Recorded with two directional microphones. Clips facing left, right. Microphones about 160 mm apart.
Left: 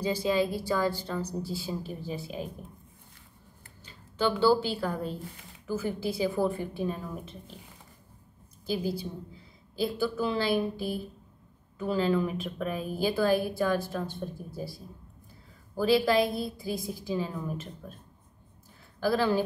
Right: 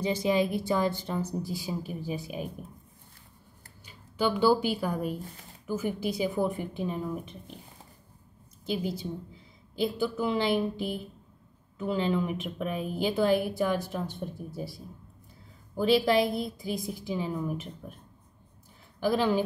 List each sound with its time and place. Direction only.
0.0 s a woman's voice: 20° right (ahead or behind)
3.8 s a woman's voice: 15° right (ahead or behind)
8.6 s a woman's voice: 20° right (ahead or behind)
15.8 s a woman's voice: 20° right (ahead or behind)
18.9 s speech: 15° right (ahead or behind)